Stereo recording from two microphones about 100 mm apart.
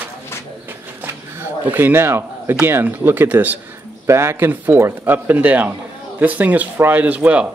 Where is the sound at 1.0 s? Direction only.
20° right (ahead or behind).